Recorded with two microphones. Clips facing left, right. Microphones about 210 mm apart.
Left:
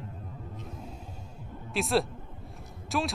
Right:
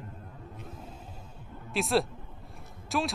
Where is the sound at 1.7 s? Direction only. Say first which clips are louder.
Even; centre (ahead or behind).